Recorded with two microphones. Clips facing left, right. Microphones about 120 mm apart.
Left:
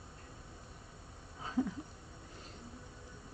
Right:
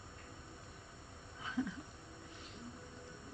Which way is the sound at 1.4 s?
40° left (ahead or behind).